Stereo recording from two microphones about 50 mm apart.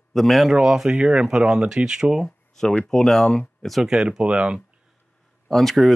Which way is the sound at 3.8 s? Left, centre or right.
Centre.